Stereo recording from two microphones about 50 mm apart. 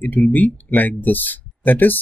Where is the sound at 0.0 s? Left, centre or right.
Left.